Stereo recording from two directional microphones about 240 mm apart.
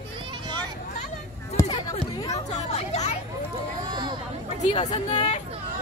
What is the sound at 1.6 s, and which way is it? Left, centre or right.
Chatter, centre.